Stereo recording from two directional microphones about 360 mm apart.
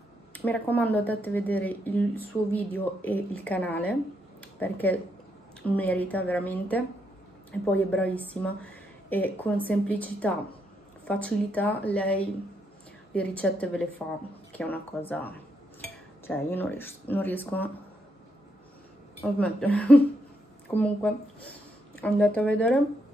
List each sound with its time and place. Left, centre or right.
0.3 s speech: centre
4.4 s a sound: centre
5.8 s speech: centre
19.2 s speech: centre